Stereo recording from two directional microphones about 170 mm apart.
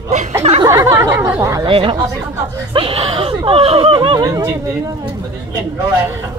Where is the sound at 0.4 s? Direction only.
35° right (ahead or behind).